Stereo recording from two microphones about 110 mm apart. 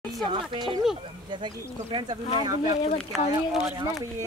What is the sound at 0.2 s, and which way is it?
Speech, 45° right (ahead or behind).